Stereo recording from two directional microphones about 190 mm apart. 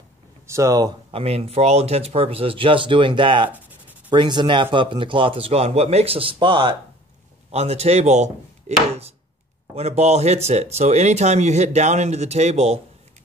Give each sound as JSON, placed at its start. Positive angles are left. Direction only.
{"t": 0.5, "sound": "speech", "side_deg": -15}
{"t": 9.8, "sound": "speech", "side_deg": -35}